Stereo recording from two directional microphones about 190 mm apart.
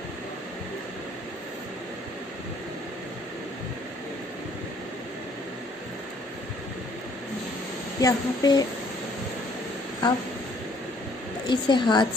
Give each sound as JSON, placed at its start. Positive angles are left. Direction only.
{"t": 8.0, "sound": "a woman's voice", "side_deg": 20}
{"t": 11.4, "sound": "a woman's voice", "side_deg": 25}